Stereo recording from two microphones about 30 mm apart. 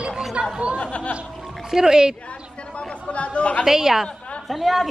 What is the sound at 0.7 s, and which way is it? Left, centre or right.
Speech, left.